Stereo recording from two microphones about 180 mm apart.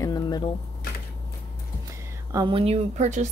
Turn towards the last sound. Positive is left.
turn(degrees=-40)  # may be behind; listen again after turning